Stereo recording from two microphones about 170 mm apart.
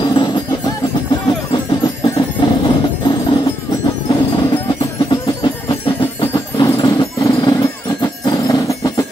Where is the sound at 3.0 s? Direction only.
25° left (ahead or behind).